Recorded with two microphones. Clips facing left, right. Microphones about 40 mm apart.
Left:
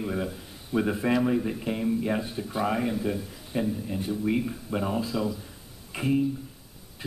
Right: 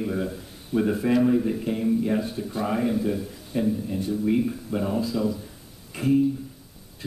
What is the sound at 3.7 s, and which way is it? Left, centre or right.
A man's voice, centre.